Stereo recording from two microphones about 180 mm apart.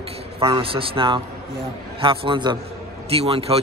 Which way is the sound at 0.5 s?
30° right (ahead or behind).